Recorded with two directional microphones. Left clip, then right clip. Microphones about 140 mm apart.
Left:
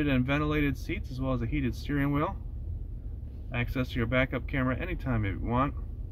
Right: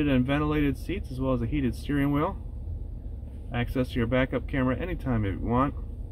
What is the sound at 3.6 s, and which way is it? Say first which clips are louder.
Speech: right 3 dB; 15° right (ahead or behind).